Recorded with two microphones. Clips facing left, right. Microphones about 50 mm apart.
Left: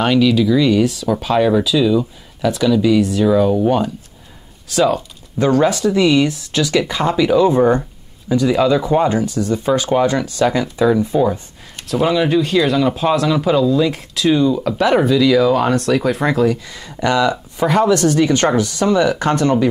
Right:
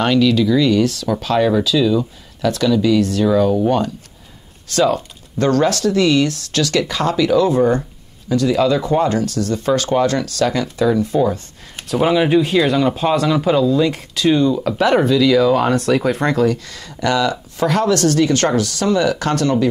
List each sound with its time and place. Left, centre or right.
0.0 s speech: centre
7.4 s speech: left
8.3 s speech: centre
11.9 s speech: centre